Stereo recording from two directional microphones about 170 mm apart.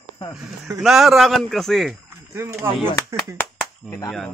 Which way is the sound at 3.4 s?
15° left (ahead or behind).